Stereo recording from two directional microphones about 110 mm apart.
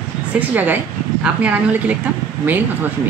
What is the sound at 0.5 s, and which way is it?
Speech, 15° right (ahead or behind).